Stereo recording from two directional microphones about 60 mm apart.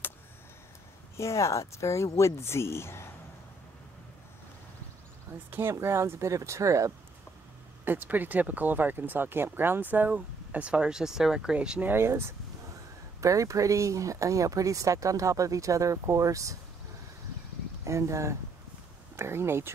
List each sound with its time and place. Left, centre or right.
1.1 s speech: left
5.5 s speech: right
7.8 s speech: right; by 11.8 s centre
11.8 s speech: right
13.2 s speech: right
17.8 s speech: right
19.1 s speech: right